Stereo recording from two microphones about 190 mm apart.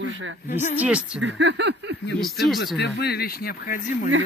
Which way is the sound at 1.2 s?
70° right (ahead or behind).